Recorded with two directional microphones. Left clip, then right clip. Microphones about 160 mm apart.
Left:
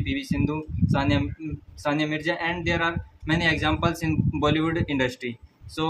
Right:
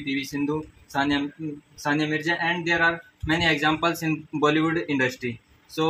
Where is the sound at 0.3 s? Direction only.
30° left (ahead or behind).